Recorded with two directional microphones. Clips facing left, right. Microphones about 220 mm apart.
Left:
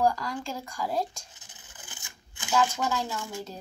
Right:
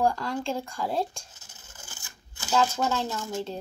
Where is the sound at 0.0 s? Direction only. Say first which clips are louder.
Right 1 dB; 25° right (ahead or behind).